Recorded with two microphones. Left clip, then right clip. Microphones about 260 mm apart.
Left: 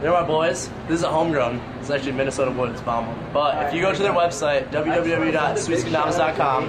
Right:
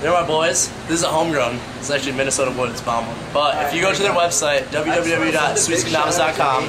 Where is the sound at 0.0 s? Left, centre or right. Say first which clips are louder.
Right 2 dB; centre.